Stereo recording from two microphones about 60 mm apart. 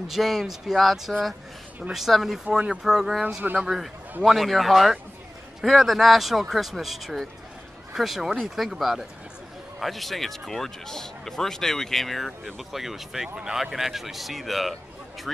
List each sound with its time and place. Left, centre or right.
0.1 s speech: centre
2.4 s speech: centre
2.8 s speech: centre